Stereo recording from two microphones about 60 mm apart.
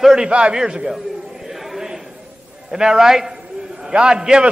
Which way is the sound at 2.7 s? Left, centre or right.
Centre.